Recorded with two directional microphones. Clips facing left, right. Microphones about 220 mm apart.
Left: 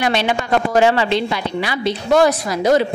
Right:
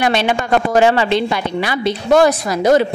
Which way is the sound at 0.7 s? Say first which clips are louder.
Right 2 dB; 50° right (ahead or behind).